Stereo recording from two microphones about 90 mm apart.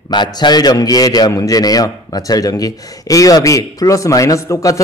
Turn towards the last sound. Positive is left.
turn(degrees=35)  # may be behind; listen again after turning